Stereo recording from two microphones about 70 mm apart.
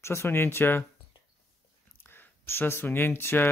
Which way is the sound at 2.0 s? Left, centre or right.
Left.